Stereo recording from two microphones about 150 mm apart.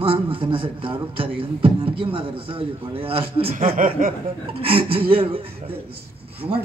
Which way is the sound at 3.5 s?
65° right (ahead or behind).